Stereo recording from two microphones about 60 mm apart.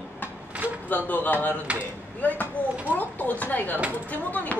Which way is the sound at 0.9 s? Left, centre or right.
Left.